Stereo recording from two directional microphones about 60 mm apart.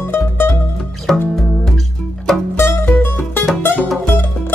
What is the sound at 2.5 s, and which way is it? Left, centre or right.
Music, left.